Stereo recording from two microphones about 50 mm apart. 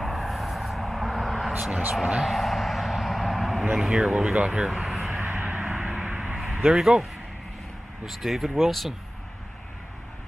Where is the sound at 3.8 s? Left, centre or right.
Centre.